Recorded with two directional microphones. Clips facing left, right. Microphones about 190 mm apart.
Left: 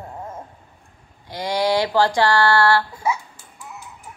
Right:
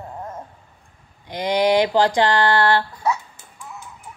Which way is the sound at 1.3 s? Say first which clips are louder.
Right 3 dB; 20° right (ahead or behind).